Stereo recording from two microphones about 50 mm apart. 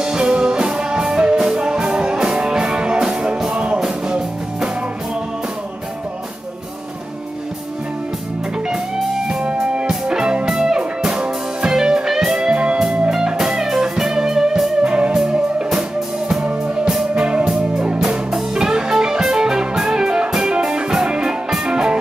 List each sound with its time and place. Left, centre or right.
0.0 s music: centre
9.3 s music: right
14.8 s music: right
16.8 s music: centre